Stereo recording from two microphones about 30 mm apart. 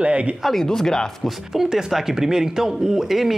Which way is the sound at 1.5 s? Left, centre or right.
Centre.